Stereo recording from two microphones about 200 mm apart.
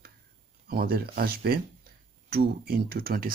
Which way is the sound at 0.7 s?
50° right (ahead or behind).